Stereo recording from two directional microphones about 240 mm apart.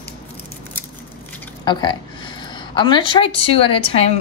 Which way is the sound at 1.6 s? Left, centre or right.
Centre.